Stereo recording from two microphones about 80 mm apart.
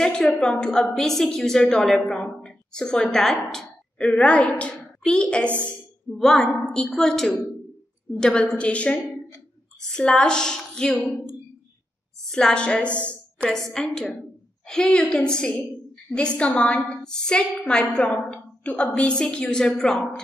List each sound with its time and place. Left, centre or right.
0.0 s a woman's voice: centre
12.3 s a woman's voice: centre